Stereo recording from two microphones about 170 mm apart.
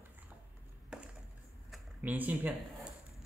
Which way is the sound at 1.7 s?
10° right (ahead or behind).